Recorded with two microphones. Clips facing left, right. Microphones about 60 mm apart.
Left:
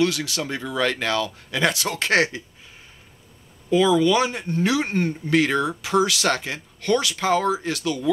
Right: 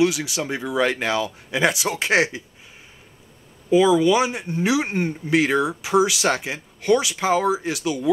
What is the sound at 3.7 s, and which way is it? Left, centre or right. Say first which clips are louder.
Speech: right 2 dB; centre.